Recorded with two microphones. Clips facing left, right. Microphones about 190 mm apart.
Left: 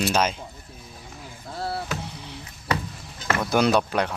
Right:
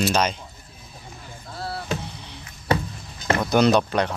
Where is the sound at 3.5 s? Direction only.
5° left (ahead or behind).